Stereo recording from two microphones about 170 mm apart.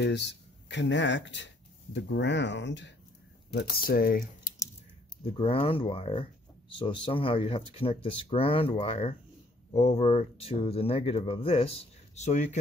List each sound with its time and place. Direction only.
0.0 s speech: 85° left
3.4 s speech: 70° left (ahead or behind)
5.2 s speech: 35° left (ahead or behind)